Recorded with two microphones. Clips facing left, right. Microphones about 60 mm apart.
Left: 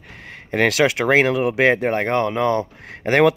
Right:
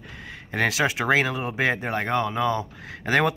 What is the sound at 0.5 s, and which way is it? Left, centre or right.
Speech, left.